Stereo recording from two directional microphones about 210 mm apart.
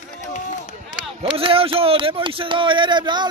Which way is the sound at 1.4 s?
25° right (ahead or behind).